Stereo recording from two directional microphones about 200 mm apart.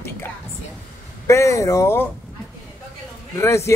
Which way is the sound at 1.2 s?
15° left (ahead or behind).